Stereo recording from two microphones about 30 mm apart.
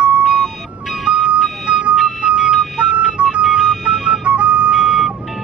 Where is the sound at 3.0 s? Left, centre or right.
Right.